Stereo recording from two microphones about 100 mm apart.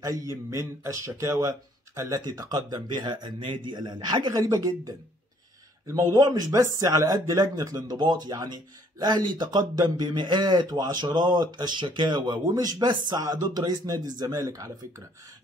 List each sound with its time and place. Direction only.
0.0 s a man's voice: 35° right (ahead or behind); by 12.2 s 55° right (ahead or behind)
12.3 s speech: 40° right (ahead or behind)